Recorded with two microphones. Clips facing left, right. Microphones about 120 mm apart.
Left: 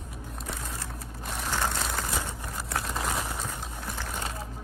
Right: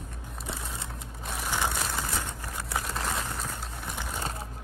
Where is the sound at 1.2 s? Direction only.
5° right (ahead or behind).